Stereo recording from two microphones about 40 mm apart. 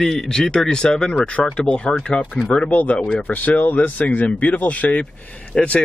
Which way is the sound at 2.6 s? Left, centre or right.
Left.